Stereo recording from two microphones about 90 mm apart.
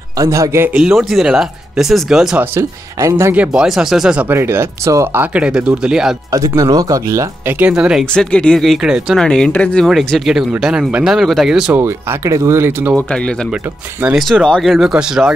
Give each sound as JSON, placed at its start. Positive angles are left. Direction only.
{"t": 0.2, "sound": "speech", "side_deg": -35}
{"t": 0.7, "sound": "speech", "side_deg": -10}
{"t": 2.5, "sound": "speech", "side_deg": -35}
{"t": 3.3, "sound": "speech", "side_deg": -5}
{"t": 4.3, "sound": "speech", "side_deg": -25}
{"t": 5.1, "sound": "speech", "side_deg": -15}
{"t": 6.3, "sound": "speech", "side_deg": -40}
{"t": 7.4, "sound": "speech", "side_deg": -20}
{"t": 7.7, "sound": "speech", "side_deg": -10}
{"t": 8.0, "sound": "speech", "side_deg": 10}
{"t": 9.2, "sound": "speech", "side_deg": 10}
{"t": 9.8, "sound": "speech", "side_deg": 0}
{"t": 11.7, "sound": "speech", "side_deg": -25}
{"t": 12.9, "sound": "speech", "side_deg": 10}